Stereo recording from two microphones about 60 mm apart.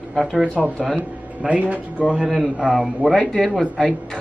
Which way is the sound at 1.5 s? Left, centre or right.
Right.